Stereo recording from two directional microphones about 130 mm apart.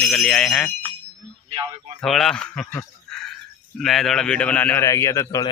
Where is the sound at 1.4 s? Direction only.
40° right (ahead or behind).